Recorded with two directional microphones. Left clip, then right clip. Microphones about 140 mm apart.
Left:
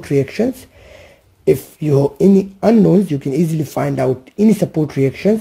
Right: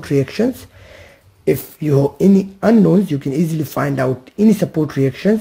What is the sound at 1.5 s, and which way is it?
Speech, 25° left (ahead or behind).